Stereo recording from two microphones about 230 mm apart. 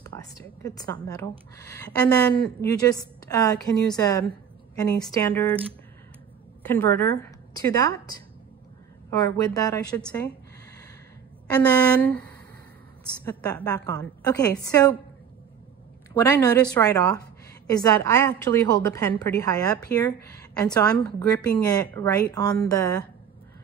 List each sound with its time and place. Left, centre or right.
0.0 s a sound: centre
1.0 s a woman's voice: centre
1.7 s speech: centre
2.8 s a woman's voice: centre
6.6 s a woman's voice: centre
11.5 s a woman's voice: centre
16.2 s a woman's voice: centre